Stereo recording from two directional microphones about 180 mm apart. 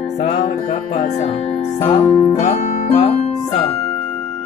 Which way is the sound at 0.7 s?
35° left (ahead or behind).